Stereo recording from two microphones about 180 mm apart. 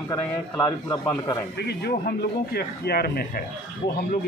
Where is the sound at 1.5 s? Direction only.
60° left (ahead or behind).